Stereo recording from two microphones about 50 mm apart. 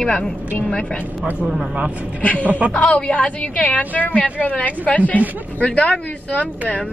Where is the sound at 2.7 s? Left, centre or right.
Left.